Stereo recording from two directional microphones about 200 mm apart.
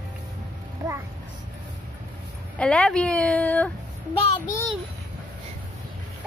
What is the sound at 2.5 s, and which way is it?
A woman's voice, 5° left (ahead or behind).